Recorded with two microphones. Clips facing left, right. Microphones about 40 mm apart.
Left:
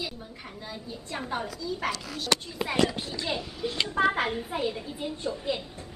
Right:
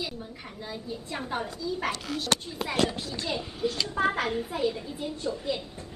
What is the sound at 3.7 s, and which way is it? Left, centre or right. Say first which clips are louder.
Speech: left 4 dB; left.